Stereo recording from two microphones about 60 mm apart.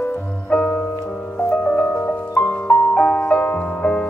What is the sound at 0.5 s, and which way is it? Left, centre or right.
Music, centre.